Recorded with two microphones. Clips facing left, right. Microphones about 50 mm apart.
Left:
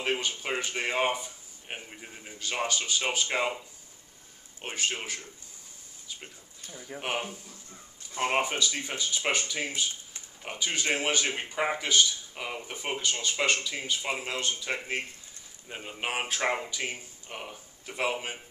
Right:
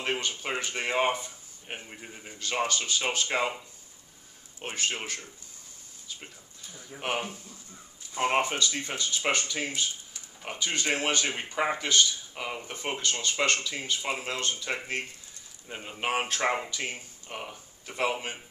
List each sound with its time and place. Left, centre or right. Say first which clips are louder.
0.0 s speech: left 1 dB; centre
4.6 s speech: even; centre
7.0 s speech: right 1 dB; centre
16.4 s speech: even; centre
16.7 s speech: even; centre